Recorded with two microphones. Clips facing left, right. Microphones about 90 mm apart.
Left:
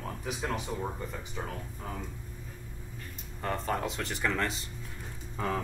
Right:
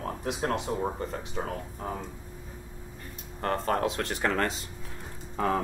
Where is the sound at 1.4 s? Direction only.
20° right (ahead or behind).